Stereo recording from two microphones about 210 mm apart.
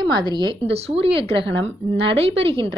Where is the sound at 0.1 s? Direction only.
20° right (ahead or behind).